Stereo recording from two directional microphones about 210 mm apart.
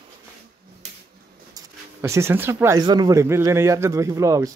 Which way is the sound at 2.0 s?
10° right (ahead or behind).